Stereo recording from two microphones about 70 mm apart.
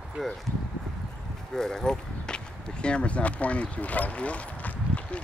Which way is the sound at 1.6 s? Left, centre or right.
Centre.